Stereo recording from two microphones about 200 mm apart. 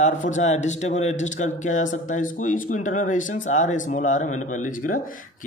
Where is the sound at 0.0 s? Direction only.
35° left (ahead or behind).